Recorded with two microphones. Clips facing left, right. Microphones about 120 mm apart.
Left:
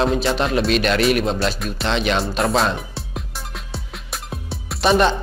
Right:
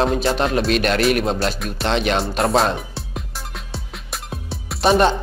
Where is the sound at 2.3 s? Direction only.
Centre (ahead or behind).